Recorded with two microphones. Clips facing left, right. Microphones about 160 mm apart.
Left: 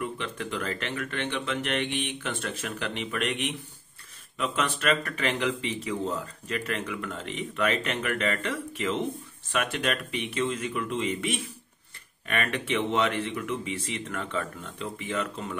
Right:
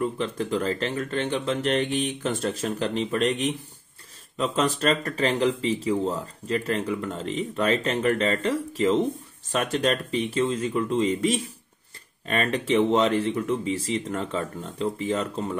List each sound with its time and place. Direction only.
0.0 s speech: 30° right (ahead or behind)